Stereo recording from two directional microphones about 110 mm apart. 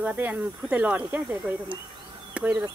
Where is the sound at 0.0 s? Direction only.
15° right (ahead or behind).